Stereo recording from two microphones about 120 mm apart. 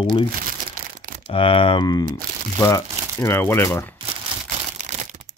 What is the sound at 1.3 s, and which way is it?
Speech, 50° left (ahead or behind).